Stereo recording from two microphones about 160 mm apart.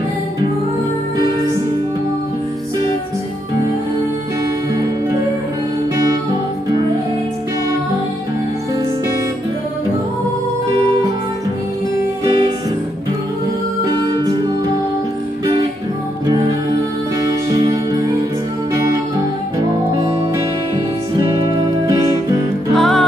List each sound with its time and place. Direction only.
13.8 s music: 25° right (ahead or behind)
16.3 s music: 25° right (ahead or behind)
21.5 s music: 20° right (ahead or behind)
22.8 s music: centre (ahead or behind)